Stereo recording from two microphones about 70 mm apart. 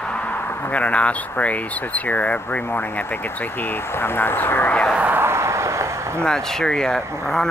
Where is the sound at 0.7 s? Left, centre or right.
Centre.